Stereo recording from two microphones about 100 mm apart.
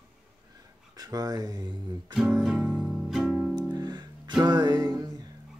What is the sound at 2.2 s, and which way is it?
Music, 5° right (ahead or behind).